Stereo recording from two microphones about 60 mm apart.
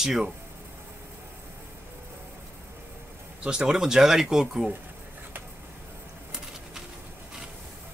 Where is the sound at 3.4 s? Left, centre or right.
Centre.